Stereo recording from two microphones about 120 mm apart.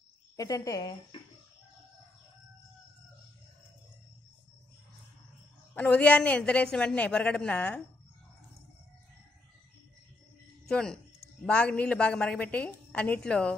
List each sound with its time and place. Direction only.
0.4 s speech: 30° left (ahead or behind)
5.8 s a woman's voice: 10° left (ahead or behind)
10.7 s a woman's voice: 5° left (ahead or behind)